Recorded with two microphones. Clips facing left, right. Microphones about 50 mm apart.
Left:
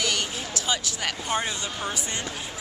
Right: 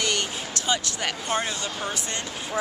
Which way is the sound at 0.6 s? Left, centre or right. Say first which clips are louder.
Right 2 dB; centre.